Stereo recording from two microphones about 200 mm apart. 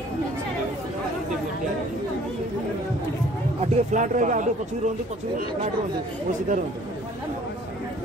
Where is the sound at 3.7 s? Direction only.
40° right (ahead or behind).